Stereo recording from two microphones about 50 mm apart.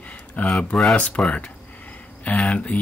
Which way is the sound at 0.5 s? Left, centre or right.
Left.